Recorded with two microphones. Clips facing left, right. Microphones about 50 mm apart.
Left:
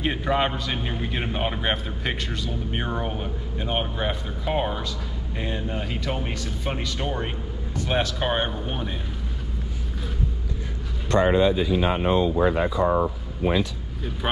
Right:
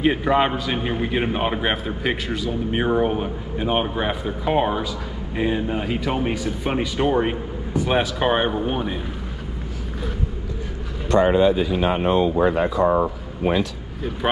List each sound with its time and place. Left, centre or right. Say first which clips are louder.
0.0 s speech: right 5 dB; centre
11.2 s speech: right 1 dB; right
12.8 s speech: right 3 dB; right
14.2 s speech: right 5 dB; centre